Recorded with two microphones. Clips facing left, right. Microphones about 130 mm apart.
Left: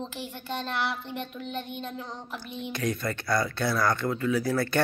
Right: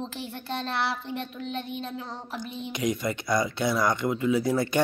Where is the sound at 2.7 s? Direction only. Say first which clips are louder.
Right 2 dB; 15° right (ahead or behind).